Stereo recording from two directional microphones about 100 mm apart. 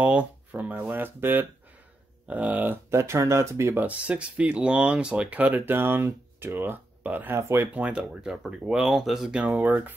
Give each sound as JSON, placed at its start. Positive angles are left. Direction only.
{"t": 0.0, "sound": "speech", "side_deg": -15}
{"t": 2.9, "sound": "speech", "side_deg": -30}
{"t": 3.8, "sound": "speech", "side_deg": -10}
{"t": 7.7, "sound": "speech", "side_deg": -10}